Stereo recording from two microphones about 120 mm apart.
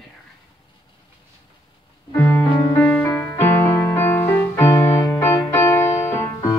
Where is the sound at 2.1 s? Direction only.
20° left (ahead or behind).